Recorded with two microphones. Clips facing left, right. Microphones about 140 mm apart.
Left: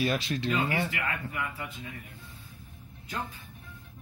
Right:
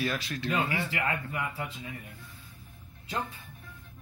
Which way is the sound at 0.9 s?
30° right (ahead or behind).